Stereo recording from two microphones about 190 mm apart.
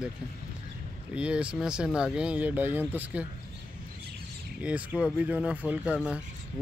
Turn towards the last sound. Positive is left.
turn(degrees=-5)  # may be behind; listen again after turning